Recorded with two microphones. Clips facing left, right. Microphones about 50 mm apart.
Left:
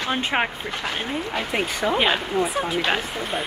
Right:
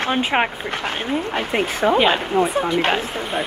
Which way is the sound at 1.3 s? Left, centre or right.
Right.